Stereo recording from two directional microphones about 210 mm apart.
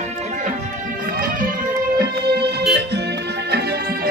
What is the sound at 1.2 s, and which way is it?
Music, 40° right (ahead or behind).